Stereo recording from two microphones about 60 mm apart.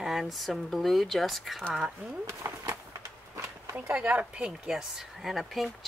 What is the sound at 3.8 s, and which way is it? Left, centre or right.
Speech, right.